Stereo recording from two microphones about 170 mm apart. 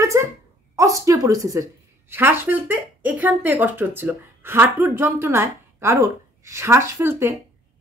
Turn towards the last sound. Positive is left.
turn(degrees=-15)  # may be behind; listen again after turning